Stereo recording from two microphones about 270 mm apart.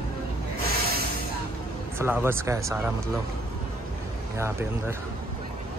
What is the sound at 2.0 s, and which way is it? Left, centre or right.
Speech, centre.